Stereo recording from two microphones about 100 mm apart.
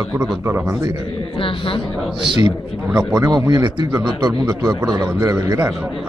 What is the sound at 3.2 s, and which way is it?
A man's voice, 35° right (ahead or behind).